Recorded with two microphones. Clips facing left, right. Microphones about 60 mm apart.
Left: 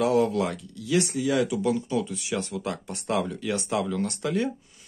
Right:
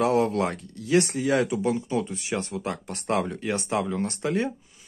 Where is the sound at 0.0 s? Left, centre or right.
Right.